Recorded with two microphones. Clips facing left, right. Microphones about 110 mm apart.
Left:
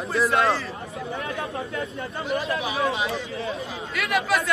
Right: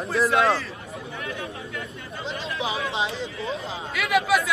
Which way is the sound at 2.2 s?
25° right (ahead or behind).